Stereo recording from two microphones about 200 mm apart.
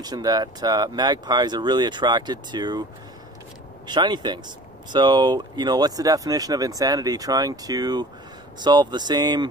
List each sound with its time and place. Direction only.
0.0 s speech: 20° right (ahead or behind)
3.8 s speech: 20° right (ahead or behind)